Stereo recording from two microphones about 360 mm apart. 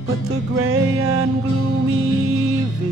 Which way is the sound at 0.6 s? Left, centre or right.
Right.